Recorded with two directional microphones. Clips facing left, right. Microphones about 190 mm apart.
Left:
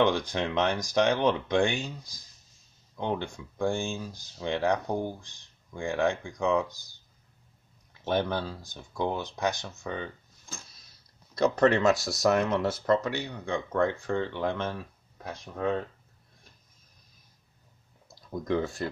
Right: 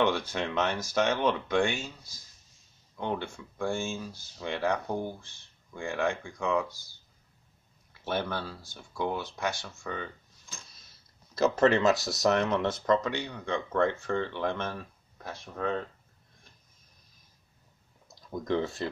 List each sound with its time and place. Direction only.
0.0 s speech: 15° left (ahead or behind)
11.3 s speech: 5° right (ahead or behind); by 14.8 s 15° left (ahead or behind)
18.3 s speech: centre (ahead or behind)